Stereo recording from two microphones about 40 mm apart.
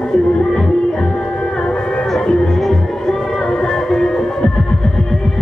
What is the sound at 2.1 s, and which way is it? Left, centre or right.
Music, centre.